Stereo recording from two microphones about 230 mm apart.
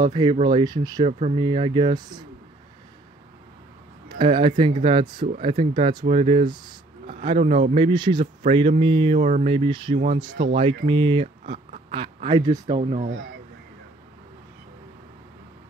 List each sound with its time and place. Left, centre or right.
0.0 s speech: right
4.2 s speech: right
11.4 s a sound: right
11.9 s speech: right